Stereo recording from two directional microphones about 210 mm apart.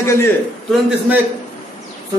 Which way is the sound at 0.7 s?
5° right (ahead or behind).